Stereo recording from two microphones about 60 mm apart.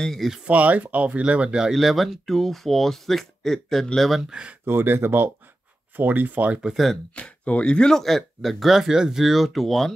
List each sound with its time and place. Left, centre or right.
0.0 s speech: centre
0.5 s speech: right
1.7 s speech: centre
4.3 s speech: centre
4.6 s speech: right
6.7 s speech: centre
7.2 s speech: left; by 9.9 s centre